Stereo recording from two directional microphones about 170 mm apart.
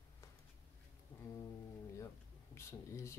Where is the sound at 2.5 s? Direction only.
15° left (ahead or behind).